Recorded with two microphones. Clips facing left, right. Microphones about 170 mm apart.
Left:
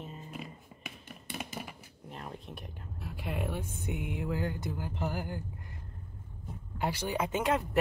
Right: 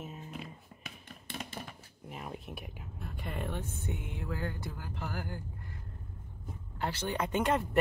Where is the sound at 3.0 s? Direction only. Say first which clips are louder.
Left 3 dB; 5° left (ahead or behind).